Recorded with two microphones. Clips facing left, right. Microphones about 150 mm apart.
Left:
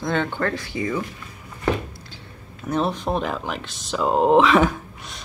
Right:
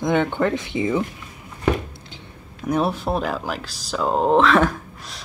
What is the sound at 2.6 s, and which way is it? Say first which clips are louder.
Speech: right 2 dB; 10° right (ahead or behind).